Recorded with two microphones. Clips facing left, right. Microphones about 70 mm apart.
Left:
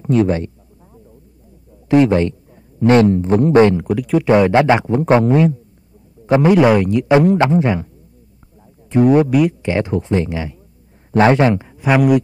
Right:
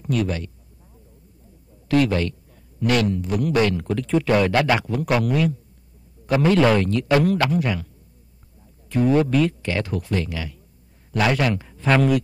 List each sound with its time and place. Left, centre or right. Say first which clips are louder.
0.0 s speech: left 9 dB; left
1.9 s a man's voice: left 7 dB; left
3.8 s speech: left 5 dB; centre
4.3 s speech: left 8 dB; left
8.9 s speech: left 6 dB; centre